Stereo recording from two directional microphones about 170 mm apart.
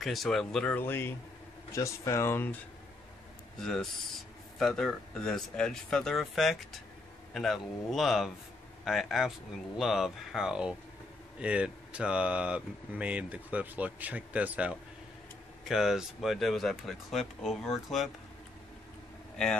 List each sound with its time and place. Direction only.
0.0 s speech: centre (ahead or behind)
3.6 s speech: 5° left (ahead or behind)
19.3 s a man's voice: 5° left (ahead or behind)